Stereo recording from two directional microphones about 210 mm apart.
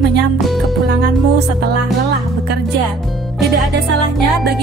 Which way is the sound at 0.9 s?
50° right (ahead or behind).